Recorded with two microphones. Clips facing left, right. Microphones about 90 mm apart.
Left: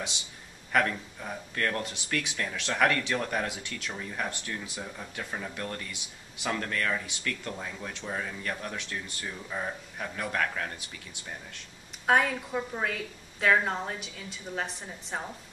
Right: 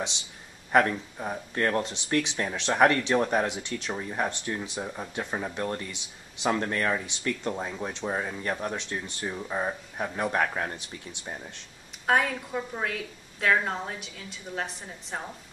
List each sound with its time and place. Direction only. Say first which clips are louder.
0.7 s speech: right 4 dB; 20° right (ahead or behind)
12.1 s a woman's voice: even; centre (ahead or behind)